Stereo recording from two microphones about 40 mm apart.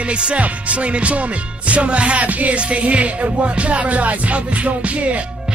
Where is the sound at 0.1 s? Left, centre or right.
Right.